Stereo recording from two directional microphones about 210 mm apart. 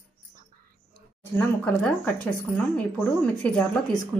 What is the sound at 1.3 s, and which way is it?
Speech, 5° left (ahead or behind).